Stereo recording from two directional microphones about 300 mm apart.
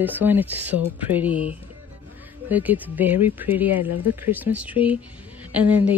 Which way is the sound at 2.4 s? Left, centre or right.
Centre.